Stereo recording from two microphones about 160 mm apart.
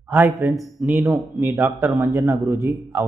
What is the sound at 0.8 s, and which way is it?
Speech, 15° right (ahead or behind).